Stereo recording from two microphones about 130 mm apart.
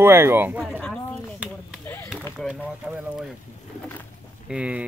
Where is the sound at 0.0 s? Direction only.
20° right (ahead or behind).